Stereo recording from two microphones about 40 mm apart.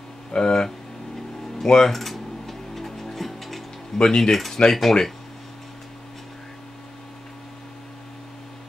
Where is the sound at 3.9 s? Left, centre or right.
Centre.